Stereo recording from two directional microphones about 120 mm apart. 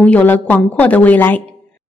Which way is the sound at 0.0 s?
15° left (ahead or behind).